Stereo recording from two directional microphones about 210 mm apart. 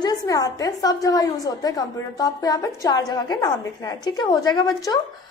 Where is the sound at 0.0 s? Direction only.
20° left (ahead or behind).